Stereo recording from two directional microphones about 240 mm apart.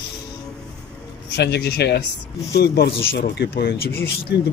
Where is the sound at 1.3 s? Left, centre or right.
Left.